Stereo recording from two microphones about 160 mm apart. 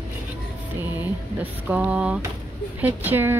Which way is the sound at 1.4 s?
10° right (ahead or behind).